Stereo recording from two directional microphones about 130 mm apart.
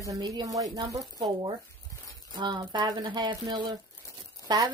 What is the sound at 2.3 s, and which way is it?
Speech, 35° right (ahead or behind).